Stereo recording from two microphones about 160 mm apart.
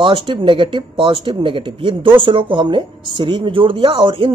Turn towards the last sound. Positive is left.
turn(degrees=-35)  # may be behind; listen again after turning